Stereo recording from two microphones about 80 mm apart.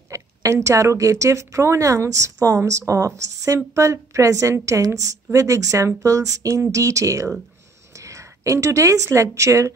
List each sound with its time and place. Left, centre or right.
0.1 s a woman's voice: right